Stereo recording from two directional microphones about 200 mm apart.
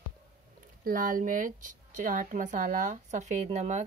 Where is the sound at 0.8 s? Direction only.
40° right (ahead or behind).